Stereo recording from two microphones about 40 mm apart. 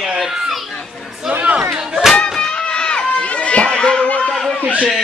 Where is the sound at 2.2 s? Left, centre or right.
Left.